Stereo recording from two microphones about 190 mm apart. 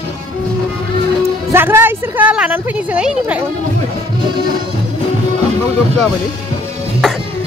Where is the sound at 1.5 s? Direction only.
10° right (ahead or behind).